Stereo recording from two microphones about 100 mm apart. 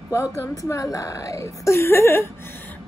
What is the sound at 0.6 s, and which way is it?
A woman's voice, 30° left (ahead or behind).